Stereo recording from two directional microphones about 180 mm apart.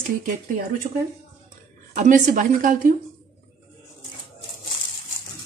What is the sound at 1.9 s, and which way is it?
Speech, 45° right (ahead or behind).